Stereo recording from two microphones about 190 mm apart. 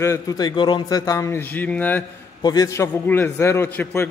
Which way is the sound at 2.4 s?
20° left (ahead or behind).